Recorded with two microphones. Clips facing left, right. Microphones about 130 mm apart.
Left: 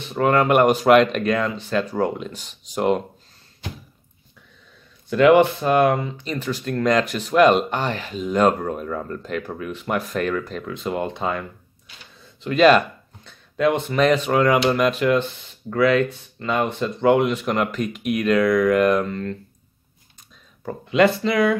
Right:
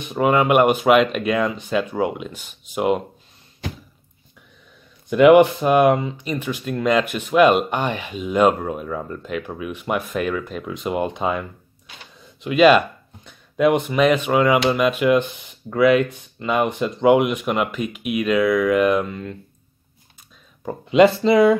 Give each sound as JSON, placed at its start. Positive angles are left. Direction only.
{"t": 0.0, "sound": "speech", "side_deg": -15}
{"t": 5.1, "sound": "speech", "side_deg": -15}
{"t": 20.6, "sound": "speech", "side_deg": -20}